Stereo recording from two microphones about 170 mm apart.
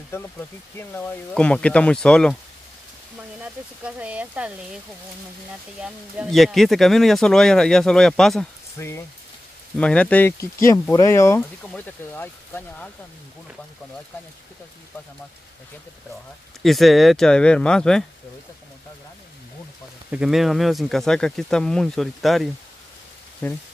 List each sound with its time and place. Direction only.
0.1 s speech: 10° left (ahead or behind)
3.2 s speech: 5° right (ahead or behind)
5.8 s speech: centre (ahead or behind)
8.7 s speech: 15° left (ahead or behind)
16.6 s speech: centre (ahead or behind)
20.1 s speech: 5° right (ahead or behind)
23.4 s speech: 10° left (ahead or behind)